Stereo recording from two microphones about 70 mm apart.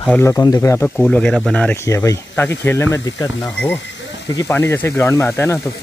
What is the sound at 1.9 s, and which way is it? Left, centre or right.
Speech, left.